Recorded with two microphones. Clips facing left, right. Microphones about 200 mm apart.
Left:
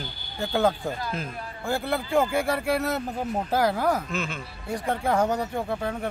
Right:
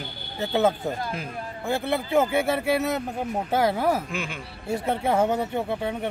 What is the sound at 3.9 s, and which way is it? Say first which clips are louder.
Speech: right 1 dB; 10° right (ahead or behind).